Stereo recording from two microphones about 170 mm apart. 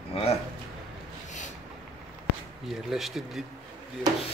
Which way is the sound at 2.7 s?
Centre (ahead or behind).